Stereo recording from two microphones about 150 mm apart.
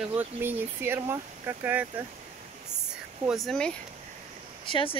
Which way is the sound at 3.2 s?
Centre (ahead or behind).